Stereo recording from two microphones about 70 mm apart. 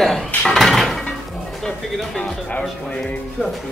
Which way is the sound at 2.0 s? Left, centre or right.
Centre.